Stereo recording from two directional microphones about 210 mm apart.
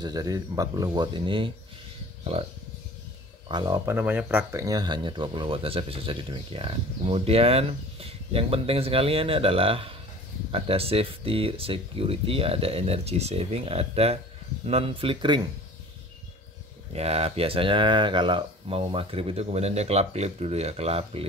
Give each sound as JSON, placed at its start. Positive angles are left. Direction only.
{"t": 0.0, "sound": "speech", "side_deg": -20}
{"t": 3.4, "sound": "speech", "side_deg": -20}
{"t": 16.9, "sound": "speech", "side_deg": -30}